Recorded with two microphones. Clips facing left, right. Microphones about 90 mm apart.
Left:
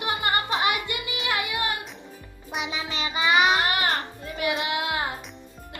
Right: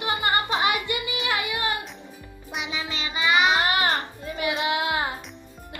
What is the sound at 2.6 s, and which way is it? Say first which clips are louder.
Music: left 1 dB; 35° left (ahead or behind).